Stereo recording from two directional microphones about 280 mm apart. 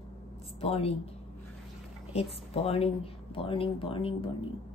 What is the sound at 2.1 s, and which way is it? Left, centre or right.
Speech, left.